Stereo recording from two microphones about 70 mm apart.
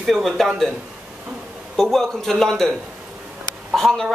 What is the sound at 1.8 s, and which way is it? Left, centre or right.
Speech, centre.